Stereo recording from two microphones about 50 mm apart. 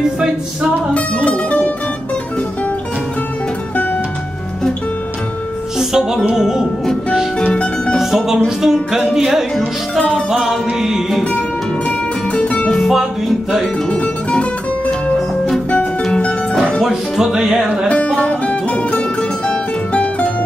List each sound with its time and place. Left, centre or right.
0.9 s music: left
5.8 s music: centre
7.3 s music: left
8.0 s speech: centre
8.7 s music: centre
9.9 s music: centre
10.3 s music: centre
12.3 s music: left
12.7 s music: centre
13.8 s music: left
16.8 s music: centre
17.8 s music: left